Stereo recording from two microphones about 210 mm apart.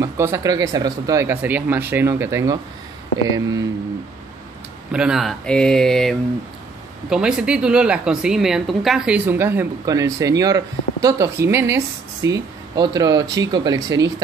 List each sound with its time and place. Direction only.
0.0 s a woman's voice: 15° right (ahead or behind)
4.9 s a woman's voice: 5° right (ahead or behind)